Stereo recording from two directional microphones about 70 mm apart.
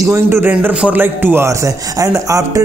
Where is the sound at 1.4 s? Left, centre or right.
Right.